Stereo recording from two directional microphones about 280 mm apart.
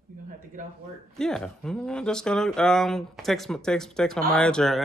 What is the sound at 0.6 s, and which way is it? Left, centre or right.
Speech, right.